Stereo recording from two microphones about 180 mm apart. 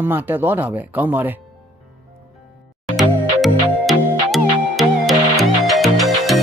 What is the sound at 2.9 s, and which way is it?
Music, centre (ahead or behind).